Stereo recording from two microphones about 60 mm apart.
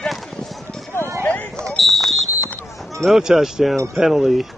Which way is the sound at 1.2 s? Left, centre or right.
Left.